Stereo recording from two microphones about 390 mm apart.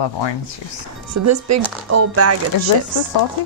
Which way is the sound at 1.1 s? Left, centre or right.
Right.